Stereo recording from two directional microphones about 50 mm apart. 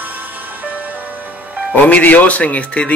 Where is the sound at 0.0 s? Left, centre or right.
Right.